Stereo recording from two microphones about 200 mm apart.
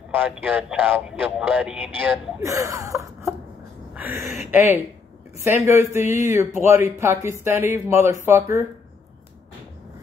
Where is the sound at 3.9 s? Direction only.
10° right (ahead or behind).